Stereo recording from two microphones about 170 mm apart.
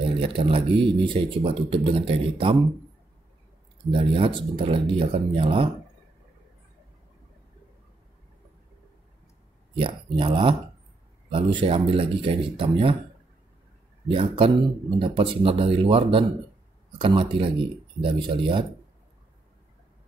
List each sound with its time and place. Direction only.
0.0 s speech: 30° right (ahead or behind)
3.9 s speech: 30° right (ahead or behind)
9.8 s speech: 30° right (ahead or behind)
14.0 s speech: 30° right (ahead or behind)